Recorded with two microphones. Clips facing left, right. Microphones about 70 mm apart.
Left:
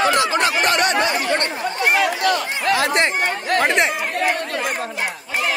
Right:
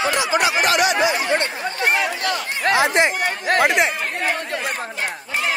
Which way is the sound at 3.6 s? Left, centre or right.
Centre.